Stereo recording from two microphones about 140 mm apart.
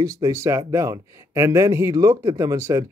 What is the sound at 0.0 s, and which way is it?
Speech, 25° right (ahead or behind).